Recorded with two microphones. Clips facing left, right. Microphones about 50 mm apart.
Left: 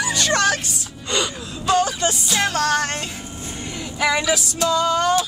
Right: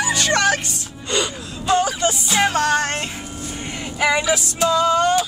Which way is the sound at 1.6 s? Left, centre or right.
Centre.